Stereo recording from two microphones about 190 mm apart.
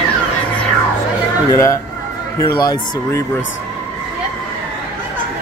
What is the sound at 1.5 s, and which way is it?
Speech, 15° left (ahead or behind).